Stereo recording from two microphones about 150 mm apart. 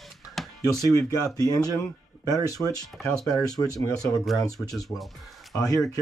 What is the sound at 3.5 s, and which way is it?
Speech, 25° left (ahead or behind).